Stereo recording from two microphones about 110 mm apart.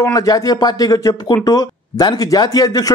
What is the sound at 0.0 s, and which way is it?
Speech, 35° left (ahead or behind).